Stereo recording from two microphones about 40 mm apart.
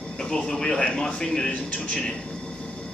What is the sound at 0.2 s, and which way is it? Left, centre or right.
Speech, centre.